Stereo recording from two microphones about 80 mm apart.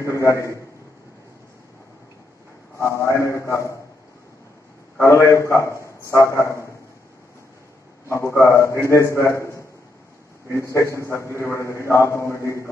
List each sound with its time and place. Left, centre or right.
0.0 s a man's voice: left
2.8 s a man's voice: left
5.0 s a man's voice: left
8.1 s a man's voice: left